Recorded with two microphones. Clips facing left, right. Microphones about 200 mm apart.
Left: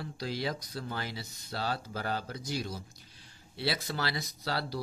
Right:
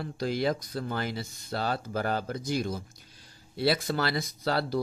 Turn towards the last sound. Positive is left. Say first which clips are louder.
# right 7 dB
turn(degrees=-50)  # may be behind; listen again after turning